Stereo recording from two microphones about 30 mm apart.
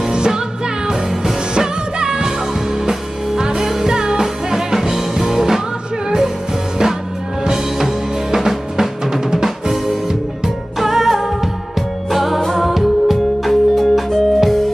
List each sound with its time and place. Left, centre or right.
0.1 s music: right
2.0 s music: right
2.8 s music: centre
7.4 s drum: centre
10.8 s music: centre
12.4 s music: centre
12.6 s music: centre